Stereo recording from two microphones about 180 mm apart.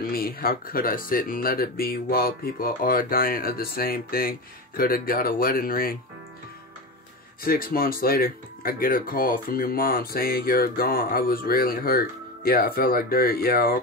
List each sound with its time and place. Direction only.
0.0 s speech: 55° left (ahead or behind)
7.4 s speech: 55° left (ahead or behind)